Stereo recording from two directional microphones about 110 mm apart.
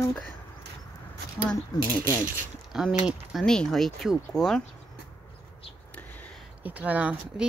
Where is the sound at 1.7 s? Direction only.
35° left (ahead or behind).